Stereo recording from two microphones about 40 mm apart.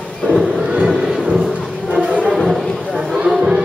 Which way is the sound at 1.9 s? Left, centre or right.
Centre.